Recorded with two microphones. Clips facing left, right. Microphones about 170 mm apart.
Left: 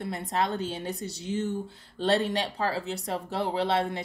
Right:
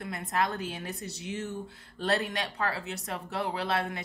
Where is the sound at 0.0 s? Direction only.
30° left (ahead or behind).